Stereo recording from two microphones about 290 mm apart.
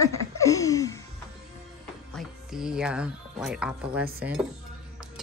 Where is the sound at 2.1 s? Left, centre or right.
Centre.